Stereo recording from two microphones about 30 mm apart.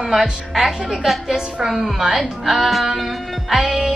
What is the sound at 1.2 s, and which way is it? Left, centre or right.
Music, centre.